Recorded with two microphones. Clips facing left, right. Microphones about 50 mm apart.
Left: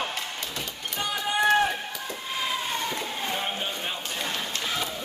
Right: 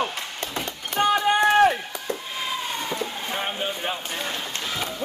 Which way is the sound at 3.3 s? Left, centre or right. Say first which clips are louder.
Right 2 dB; right.